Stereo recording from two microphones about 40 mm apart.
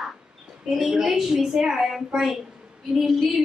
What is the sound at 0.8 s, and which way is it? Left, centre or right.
A woman's voice, centre.